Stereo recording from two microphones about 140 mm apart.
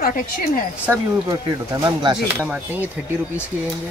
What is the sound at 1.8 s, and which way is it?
Speech, 30° right (ahead or behind).